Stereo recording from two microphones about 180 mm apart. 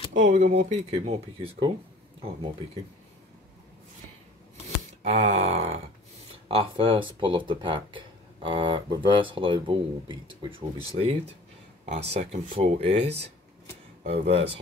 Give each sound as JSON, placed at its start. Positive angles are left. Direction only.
{"t": 0.1, "sound": "speech", "side_deg": -45}
{"t": 5.0, "sound": "speech", "side_deg": -40}
{"t": 14.0, "sound": "speech", "side_deg": -35}